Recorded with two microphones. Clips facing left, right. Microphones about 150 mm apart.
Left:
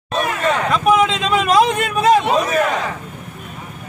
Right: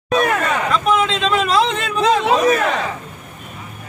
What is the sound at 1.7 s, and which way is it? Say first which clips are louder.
Speech: left 3 dB; 50° left (ahead or behind).